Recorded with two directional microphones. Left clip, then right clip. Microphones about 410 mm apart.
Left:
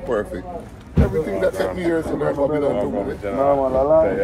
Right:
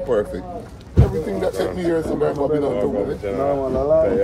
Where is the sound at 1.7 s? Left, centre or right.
Centre.